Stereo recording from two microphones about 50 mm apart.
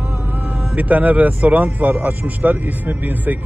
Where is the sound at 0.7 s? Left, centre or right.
Right.